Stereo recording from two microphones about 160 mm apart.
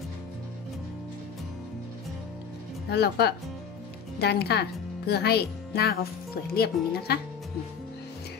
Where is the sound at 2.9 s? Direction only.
90° left.